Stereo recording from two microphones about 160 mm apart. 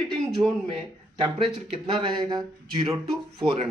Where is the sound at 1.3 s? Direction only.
35° right (ahead or behind).